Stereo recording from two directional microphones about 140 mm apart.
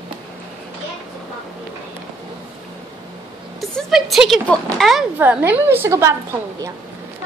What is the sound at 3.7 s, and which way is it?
A woman's voice, centre (ahead or behind).